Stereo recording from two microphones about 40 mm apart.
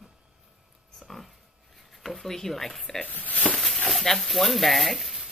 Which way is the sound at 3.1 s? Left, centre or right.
Left.